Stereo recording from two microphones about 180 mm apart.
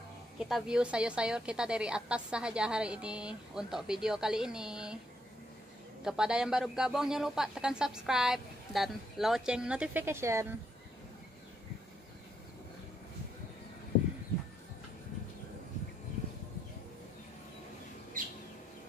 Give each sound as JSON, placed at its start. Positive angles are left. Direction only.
{"t": 0.4, "sound": "a woman's voice", "side_deg": -5}
{"t": 6.0, "sound": "a woman's voice", "side_deg": -5}
{"t": 18.2, "sound": "bird", "side_deg": -50}